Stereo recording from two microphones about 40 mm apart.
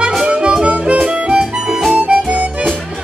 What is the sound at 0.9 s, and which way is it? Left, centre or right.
Music, centre.